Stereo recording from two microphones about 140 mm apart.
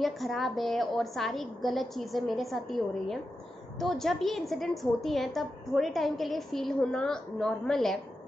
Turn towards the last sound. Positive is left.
turn(degrees=5)  # may be behind; listen again after turning